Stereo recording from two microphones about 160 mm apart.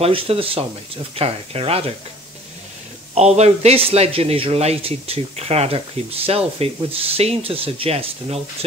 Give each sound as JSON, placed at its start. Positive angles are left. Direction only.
{"t": 0.0, "sound": "a man's voice", "side_deg": -35}
{"t": 3.2, "sound": "a man's voice", "side_deg": -40}